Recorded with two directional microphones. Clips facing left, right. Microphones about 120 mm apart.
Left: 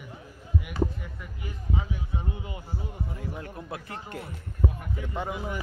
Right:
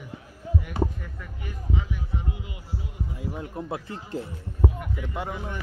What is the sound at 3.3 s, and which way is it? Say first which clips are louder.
Speech: right 5 dB; 20° right (ahead or behind).